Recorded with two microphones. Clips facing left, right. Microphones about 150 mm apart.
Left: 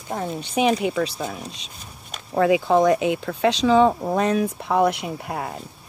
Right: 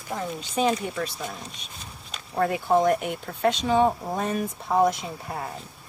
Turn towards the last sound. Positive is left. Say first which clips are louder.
# left 4 dB
turn(degrees=85)